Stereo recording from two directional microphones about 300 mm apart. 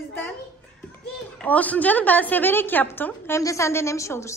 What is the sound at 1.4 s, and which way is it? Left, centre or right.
A woman's voice, centre.